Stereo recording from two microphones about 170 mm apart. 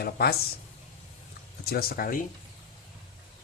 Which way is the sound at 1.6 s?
65° left (ahead or behind).